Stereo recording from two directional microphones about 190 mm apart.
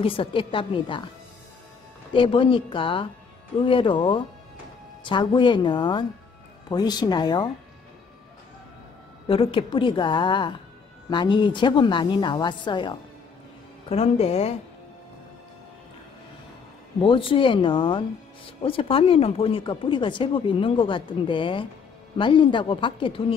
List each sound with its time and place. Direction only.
0.0 s speech: 30° left (ahead or behind)
2.1 s speech: 25° left (ahead or behind)
9.3 s speech: 30° left (ahead or behind)
17.0 s speech: 25° left (ahead or behind)